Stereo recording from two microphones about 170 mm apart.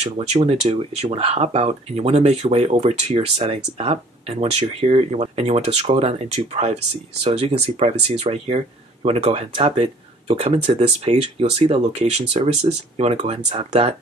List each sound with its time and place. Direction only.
0.0 s speech: 40° right (ahead or behind)